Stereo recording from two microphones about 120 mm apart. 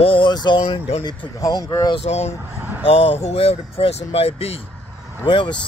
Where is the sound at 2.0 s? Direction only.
65° left (ahead or behind).